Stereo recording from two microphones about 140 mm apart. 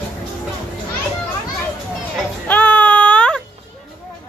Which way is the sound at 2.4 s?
10° left (ahead or behind).